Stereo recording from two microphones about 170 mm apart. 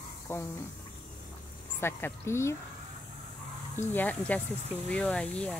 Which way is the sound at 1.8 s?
15° left (ahead or behind).